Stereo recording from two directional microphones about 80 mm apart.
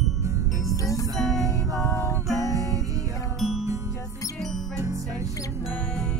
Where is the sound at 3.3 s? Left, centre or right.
Centre.